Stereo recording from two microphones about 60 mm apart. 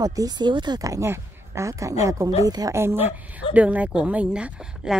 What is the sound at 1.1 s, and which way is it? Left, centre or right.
A woman's voice, right.